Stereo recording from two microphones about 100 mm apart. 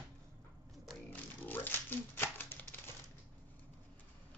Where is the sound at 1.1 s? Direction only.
20° left (ahead or behind).